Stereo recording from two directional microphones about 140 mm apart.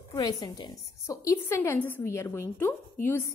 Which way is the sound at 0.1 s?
25° left (ahead or behind).